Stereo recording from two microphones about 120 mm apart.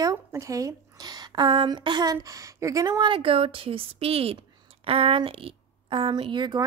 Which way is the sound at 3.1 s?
50° right (ahead or behind).